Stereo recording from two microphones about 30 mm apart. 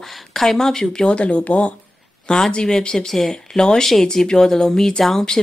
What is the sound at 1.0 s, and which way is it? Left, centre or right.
Speech, left.